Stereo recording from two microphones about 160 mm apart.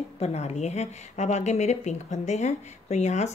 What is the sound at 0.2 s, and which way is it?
A woman's voice, 40° left (ahead or behind).